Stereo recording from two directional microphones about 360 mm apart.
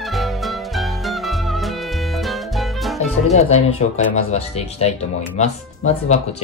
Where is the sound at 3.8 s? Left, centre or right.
Centre.